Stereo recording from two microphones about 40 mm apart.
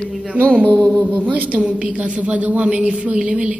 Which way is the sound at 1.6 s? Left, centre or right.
Right.